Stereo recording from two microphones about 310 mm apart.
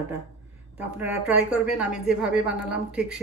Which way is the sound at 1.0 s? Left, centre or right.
Centre.